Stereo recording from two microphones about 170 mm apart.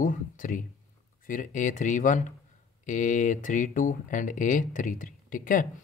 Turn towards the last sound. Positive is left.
turn(degrees=55)  # may be behind; listen again after turning